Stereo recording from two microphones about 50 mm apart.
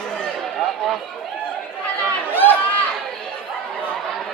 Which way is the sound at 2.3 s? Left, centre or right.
Left.